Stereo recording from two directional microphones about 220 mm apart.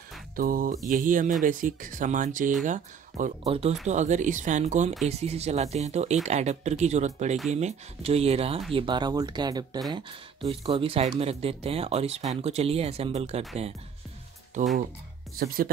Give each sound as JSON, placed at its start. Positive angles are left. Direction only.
{"t": 0.4, "sound": "speech", "side_deg": -40}
{"t": 15.3, "sound": "speech", "side_deg": -40}